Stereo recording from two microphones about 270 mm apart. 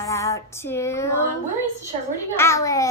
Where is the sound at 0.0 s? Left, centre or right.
Centre.